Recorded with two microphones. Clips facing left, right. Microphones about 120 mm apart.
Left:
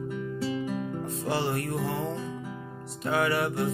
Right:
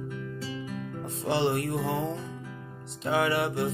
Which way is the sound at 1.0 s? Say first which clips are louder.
Right 5 dB; 25° right (ahead or behind).